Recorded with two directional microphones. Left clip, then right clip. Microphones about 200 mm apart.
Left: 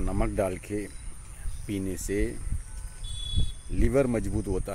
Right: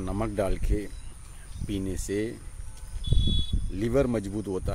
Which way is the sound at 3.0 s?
55° left (ahead or behind).